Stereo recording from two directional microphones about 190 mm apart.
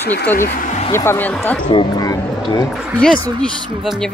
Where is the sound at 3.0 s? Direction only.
5° left (ahead or behind).